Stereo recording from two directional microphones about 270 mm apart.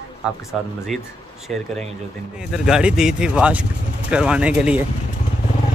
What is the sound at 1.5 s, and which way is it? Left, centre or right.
Speech, centre.